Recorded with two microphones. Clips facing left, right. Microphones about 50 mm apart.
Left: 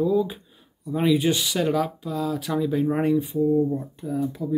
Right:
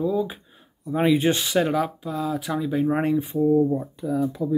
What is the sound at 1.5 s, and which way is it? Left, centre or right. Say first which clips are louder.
Speech: right 1 dB; centre.